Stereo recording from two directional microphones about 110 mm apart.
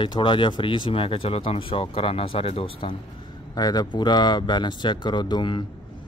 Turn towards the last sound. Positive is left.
turn(degrees=45)  # may be behind; listen again after turning